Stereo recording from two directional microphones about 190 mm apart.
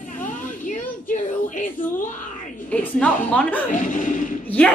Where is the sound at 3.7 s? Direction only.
45° left (ahead or behind).